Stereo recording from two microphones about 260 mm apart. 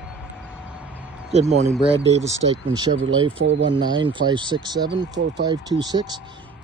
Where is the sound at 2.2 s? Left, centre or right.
Right.